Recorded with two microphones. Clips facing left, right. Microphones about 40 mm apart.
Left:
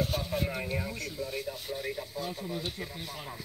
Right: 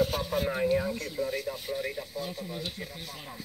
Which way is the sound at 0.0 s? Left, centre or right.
Right.